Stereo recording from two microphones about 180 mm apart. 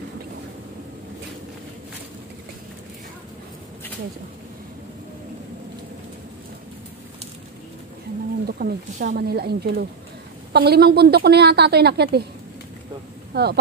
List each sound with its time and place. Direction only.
8.5 s a sound: 60° right (ahead or behind)
9.0 s a woman's voice: 65° right (ahead or behind)
13.3 s speech: 65° right (ahead or behind)